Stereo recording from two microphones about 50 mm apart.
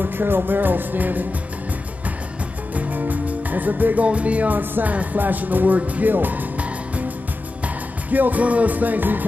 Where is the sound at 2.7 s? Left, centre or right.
Right.